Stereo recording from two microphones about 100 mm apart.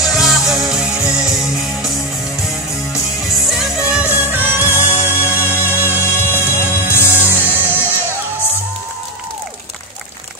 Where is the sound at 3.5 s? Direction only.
5° right (ahead or behind); by 6.1 s 20° right (ahead or behind).